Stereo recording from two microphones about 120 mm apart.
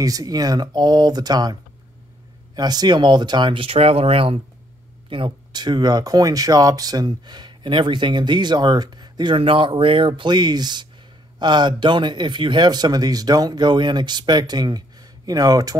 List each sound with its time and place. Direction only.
0.0 s speech: 30° right (ahead or behind); by 4.4 s 50° right (ahead or behind)
5.1 s speech: 40° right (ahead or behind)